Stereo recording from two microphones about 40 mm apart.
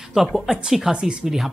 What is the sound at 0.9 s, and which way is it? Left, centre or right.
Speech, right.